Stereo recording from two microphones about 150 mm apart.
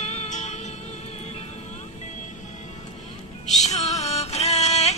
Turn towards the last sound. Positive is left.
turn(degrees=45)  # may be behind; listen again after turning